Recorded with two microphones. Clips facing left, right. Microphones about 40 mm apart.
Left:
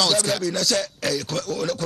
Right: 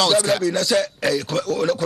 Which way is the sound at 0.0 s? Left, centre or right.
Centre.